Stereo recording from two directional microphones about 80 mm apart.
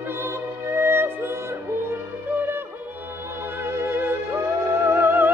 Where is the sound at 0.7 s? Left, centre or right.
Right.